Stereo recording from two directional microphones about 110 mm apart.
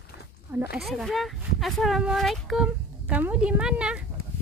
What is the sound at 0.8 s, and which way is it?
Speech, centre (ahead or behind).